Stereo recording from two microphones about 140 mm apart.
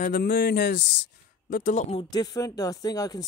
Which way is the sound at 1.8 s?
45° left (ahead or behind).